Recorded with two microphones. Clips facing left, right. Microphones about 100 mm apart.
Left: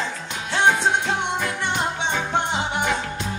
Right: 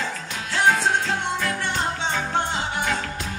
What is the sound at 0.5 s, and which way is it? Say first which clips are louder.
Music: left 1 dB; 20° left (ahead or behind).